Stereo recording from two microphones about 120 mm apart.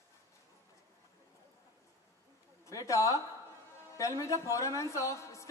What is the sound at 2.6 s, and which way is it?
A woman's voice, 25° left (ahead or behind).